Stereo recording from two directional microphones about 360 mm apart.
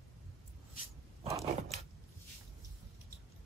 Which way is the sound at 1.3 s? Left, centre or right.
Centre.